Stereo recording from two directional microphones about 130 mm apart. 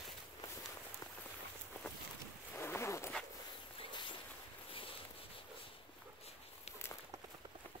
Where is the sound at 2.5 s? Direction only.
20° left (ahead or behind).